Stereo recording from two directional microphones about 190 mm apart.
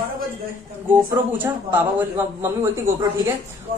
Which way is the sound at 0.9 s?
10° right (ahead or behind).